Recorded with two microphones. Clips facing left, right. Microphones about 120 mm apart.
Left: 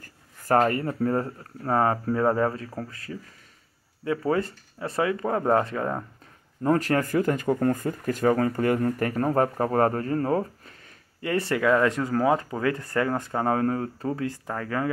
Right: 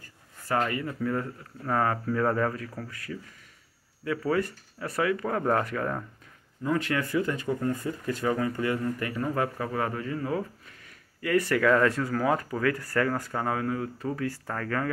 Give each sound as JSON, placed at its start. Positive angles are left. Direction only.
{"t": 0.5, "sound": "speech", "side_deg": 45}
{"t": 6.6, "sound": "speech", "side_deg": 40}
{"t": 11.1, "sound": "speech", "side_deg": 25}